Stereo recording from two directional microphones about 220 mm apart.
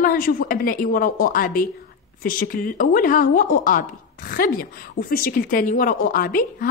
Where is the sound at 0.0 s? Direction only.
40° left (ahead or behind).